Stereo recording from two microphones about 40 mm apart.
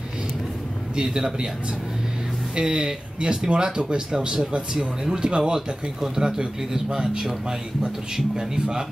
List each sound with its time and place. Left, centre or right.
0.9 s speech: centre
2.5 s speech: right
4.7 s speech: centre
8.4 s speech: centre